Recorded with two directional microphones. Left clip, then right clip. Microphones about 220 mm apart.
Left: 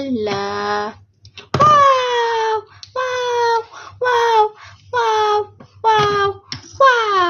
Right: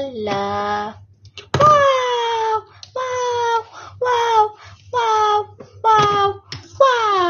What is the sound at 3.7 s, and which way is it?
Child singing, 30° left (ahead or behind).